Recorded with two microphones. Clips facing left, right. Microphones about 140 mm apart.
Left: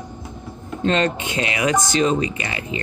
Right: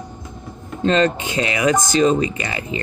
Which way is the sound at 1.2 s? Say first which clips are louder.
Right 2 dB; 35° right (ahead or behind).